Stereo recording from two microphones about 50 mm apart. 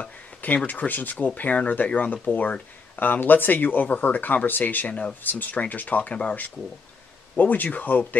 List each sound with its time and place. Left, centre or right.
0.7 s speech: left
7.3 s speech: left